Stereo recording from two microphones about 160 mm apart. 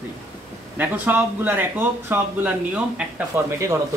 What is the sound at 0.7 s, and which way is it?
Speech, 10° right (ahead or behind).